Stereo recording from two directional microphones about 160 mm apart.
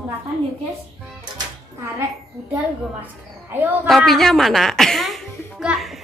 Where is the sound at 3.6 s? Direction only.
10° right (ahead or behind).